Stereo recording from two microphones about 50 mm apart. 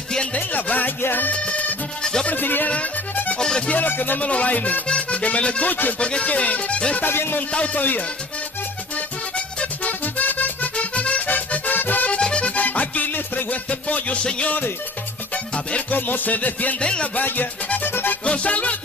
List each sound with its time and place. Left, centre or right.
0.3 s music: left
1.3 s music: left
2.2 s music: left
2.7 s music: left
3.3 s music: centre
3.7 s music: left
5.9 s music: centre
7.0 s music: left
7.5 s music: left
9.8 s accordion: left
12.1 s music: left
15.9 s music: left
16.8 s music: left
18.2 s music: left